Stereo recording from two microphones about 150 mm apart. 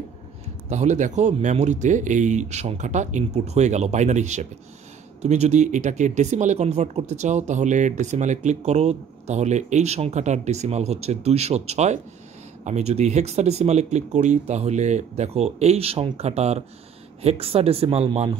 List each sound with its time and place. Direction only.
0.7 s speech: 50° right (ahead or behind)